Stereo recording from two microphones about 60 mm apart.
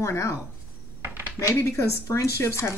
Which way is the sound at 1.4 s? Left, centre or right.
Left.